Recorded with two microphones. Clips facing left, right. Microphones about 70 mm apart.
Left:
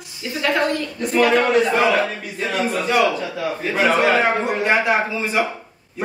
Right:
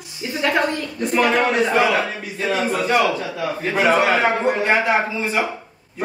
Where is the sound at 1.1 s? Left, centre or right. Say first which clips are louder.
Left 2 dB; centre.